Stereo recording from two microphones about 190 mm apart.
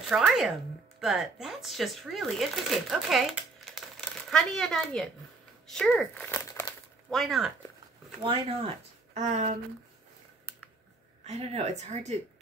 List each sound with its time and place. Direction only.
0.1 s speech: centre (ahead or behind)
5.7 s crumpling: 5° left (ahead or behind)
8.2 s speech: 30° right (ahead or behind)
11.2 s speech: 35° right (ahead or behind)